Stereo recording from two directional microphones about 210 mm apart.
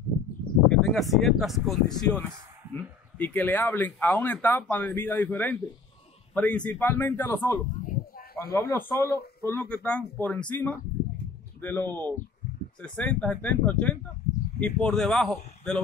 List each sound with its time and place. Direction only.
0.7 s speech: centre (ahead or behind)
7.8 s a sound: 40° left (ahead or behind)
8.4 s speech: 10° left (ahead or behind)